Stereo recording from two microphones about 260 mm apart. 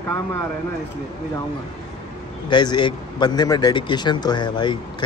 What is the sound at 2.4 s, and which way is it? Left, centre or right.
A man's voice, centre.